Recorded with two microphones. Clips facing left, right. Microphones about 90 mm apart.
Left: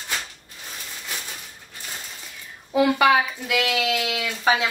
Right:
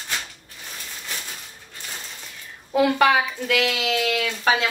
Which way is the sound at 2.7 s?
Centre (ahead or behind).